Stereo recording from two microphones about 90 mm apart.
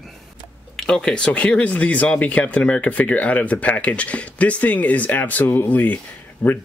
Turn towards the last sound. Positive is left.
turn(degrees=20)  # may be behind; listen again after turning